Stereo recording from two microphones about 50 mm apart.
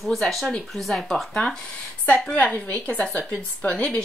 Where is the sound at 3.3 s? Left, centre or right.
Centre.